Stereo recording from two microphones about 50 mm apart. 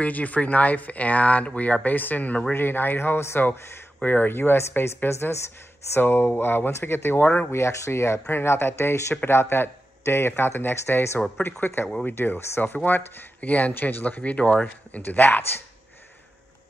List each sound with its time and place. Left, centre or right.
0.0 s speech: left
2.5 s speech: left
4.8 s a woman's voice: left
5.9 s speech: left
7.5 s speech: left
8.3 s speech: left
9.3 s speech: left
12.7 s speech: left
13.4 s speech: left
13.7 s speech: left
15.0 s speech: left